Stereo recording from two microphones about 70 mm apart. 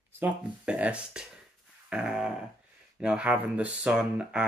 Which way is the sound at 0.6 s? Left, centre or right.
Centre.